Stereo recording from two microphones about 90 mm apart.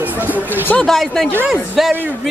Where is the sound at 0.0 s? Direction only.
20° right (ahead or behind).